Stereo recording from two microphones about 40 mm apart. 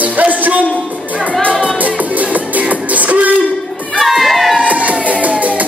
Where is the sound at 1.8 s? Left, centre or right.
Right.